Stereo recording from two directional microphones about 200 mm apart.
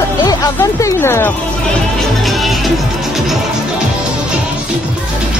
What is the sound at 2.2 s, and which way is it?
Music, centre (ahead or behind).